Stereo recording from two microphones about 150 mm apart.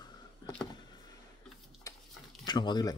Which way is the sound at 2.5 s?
30° left (ahead or behind).